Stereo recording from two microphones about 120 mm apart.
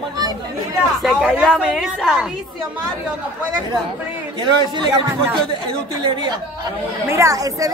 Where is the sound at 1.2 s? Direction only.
5° right (ahead or behind).